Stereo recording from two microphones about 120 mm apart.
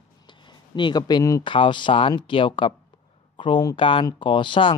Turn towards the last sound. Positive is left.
turn(degrees=45)  # may be behind; listen again after turning